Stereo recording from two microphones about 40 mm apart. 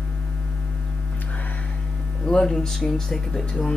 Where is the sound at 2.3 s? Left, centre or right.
Centre.